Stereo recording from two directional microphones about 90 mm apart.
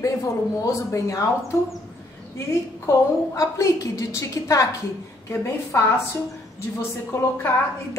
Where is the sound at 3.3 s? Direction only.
40° left (ahead or behind).